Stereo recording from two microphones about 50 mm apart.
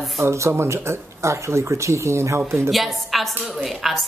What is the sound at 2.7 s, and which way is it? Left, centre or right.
A woman's voice, centre.